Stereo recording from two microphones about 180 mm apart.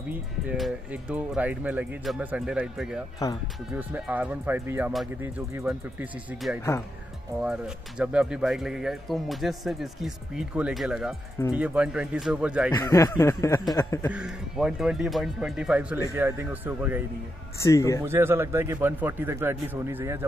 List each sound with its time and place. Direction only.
0.1 s speech: 5° right (ahead or behind)
3.2 s speech: 20° left (ahead or behind)
3.7 s speech: 10° right (ahead or behind)
12.7 s speech: 20° left (ahead or behind)
14.1 s speech: 5° right (ahead or behind)
17.6 s speech: 15° left (ahead or behind)
18.0 s speech: 15° right (ahead or behind)